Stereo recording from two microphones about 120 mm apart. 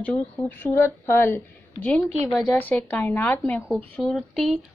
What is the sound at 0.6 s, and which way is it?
A woman's voice, 20° left (ahead or behind).